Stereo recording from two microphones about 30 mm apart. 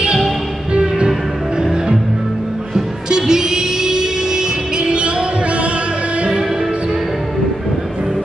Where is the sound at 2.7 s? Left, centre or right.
Right.